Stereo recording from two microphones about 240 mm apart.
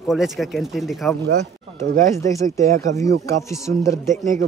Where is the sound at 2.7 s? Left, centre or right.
Right.